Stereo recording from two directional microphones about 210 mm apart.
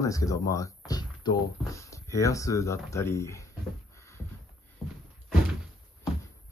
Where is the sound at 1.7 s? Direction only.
15° left (ahead or behind).